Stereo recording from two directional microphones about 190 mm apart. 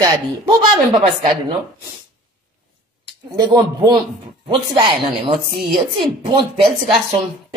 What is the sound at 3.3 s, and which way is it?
Speech, 20° right (ahead or behind).